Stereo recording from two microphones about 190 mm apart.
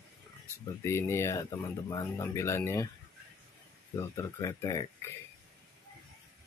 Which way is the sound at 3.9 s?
15° left (ahead or behind).